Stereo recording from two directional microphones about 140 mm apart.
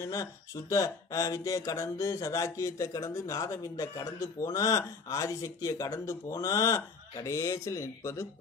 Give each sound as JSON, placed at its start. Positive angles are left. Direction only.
{"t": 0.0, "sound": "speech", "side_deg": 20}